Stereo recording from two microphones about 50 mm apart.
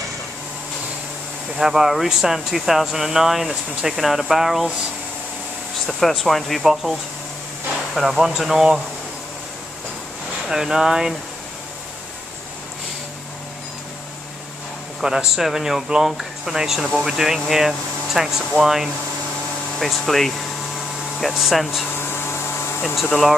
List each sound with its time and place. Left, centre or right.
1.6 s speech: centre
5.9 s speech: centre
7.9 s speech: centre
10.5 s speech: centre
15.0 s speech: centre
19.8 s speech: centre
21.9 s a sound: left